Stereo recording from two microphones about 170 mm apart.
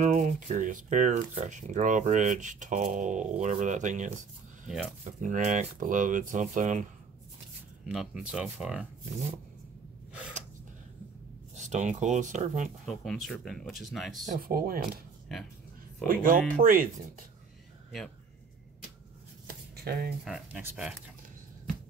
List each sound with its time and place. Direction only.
0.0 s speech: 45° right (ahead or behind)
5.2 s speech: 50° right (ahead or behind)
7.8 s speech: centre (ahead or behind)
11.5 s speech: 45° right (ahead or behind)
12.8 s speech: centre (ahead or behind)
14.2 s speech: 60° right (ahead or behind)
16.1 s speech: 55° right (ahead or behind)
19.8 s speech: 70° right (ahead or behind)
20.2 s speech: 5° right (ahead or behind)